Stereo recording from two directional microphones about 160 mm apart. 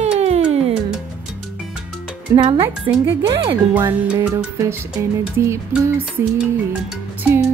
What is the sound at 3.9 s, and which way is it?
Music, 15° right (ahead or behind).